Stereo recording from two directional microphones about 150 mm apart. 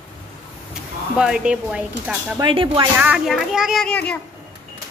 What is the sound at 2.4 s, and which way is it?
Speech, 35° right (ahead or behind).